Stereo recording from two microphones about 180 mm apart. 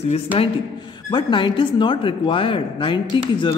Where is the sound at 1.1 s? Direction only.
25° left (ahead or behind).